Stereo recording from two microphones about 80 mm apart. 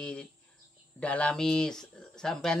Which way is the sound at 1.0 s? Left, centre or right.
Centre.